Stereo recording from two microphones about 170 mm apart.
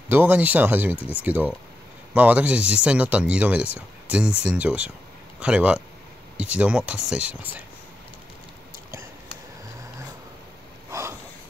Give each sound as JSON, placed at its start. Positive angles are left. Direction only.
{"t": 0.1, "sound": "speech", "side_deg": -10}
{"t": 10.9, "sound": "snort", "side_deg": -15}